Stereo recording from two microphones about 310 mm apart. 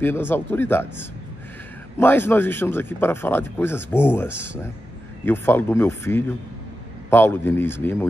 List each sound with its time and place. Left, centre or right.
0.0 s speech: centre